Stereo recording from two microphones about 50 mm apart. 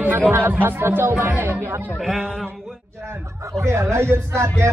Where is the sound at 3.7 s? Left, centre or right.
Right.